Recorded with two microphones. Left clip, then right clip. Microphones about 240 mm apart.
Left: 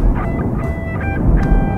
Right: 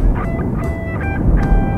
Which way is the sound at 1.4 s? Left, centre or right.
Centre.